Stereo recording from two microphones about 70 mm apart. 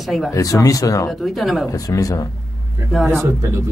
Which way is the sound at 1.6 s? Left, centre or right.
Left.